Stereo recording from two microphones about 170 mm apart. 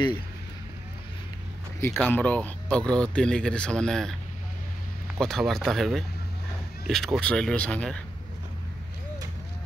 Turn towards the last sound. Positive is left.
turn(degrees=5)  # may be behind; listen again after turning